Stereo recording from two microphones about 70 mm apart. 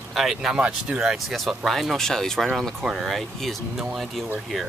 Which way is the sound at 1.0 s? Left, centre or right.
Centre.